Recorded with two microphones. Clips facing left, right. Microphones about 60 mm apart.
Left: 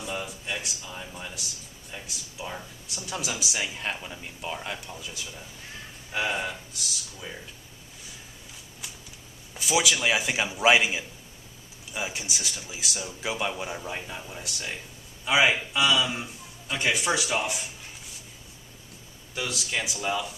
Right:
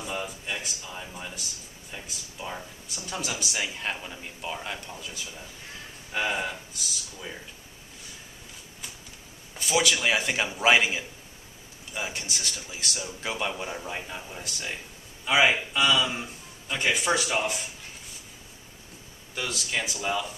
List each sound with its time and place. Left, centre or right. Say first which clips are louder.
0.0 s speech: even; centre
9.5 s speech: even; centre
19.3 s speech: even; centre